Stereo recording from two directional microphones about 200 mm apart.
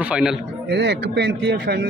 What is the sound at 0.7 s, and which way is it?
A man's voice, 55° right (ahead or behind).